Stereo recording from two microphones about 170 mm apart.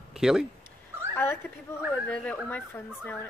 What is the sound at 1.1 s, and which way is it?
Speech, 15° left (ahead or behind).